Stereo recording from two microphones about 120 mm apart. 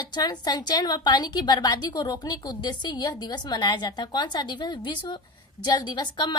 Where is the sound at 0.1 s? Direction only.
35° left (ahead or behind).